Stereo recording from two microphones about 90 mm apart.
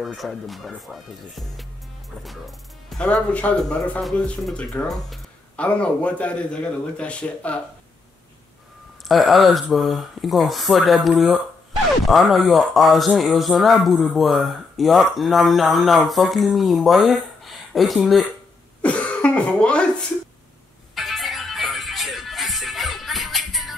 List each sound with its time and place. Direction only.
0.0 s speech: centre (ahead or behind)
2.2 s music: centre (ahead or behind)
3.0 s a man's voice: 15° left (ahead or behind)
5.6 s a man's voice: 15° left (ahead or behind)
9.0 s speech: centre (ahead or behind)
18.8 s cough: 15° left (ahead or behind)
20.9 s music: centre (ahead or behind)